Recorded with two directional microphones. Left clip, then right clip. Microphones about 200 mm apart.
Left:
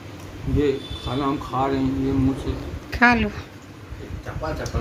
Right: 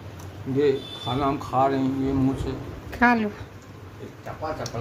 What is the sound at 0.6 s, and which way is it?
A woman's voice, 15° right (ahead or behind).